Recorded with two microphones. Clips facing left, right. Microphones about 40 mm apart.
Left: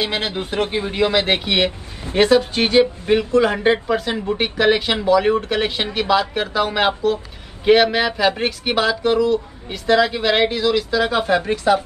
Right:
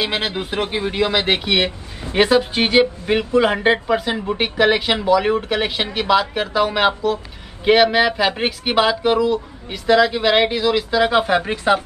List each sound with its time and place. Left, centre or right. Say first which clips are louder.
0.0 s speech: right 1 dB; centre
0.8 s speech: right 1 dB; right
1.1 s speech: even; centre
2.1 s speech: left 1 dB; centre
9.8 s speech: right 1 dB; centre; by 11.8 s right